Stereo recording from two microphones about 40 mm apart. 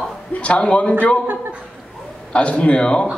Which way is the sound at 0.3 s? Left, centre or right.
Left.